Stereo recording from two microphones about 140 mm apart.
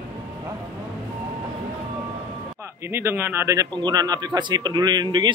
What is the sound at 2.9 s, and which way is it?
A man's voice, 15° right (ahead or behind).